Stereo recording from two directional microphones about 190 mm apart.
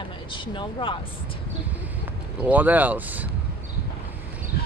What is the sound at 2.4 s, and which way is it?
Speech, 10° right (ahead or behind).